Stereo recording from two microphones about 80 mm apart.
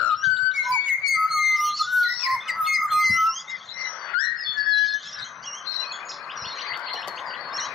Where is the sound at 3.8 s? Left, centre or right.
Centre.